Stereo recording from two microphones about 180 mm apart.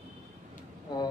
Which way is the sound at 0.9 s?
20° left (ahead or behind).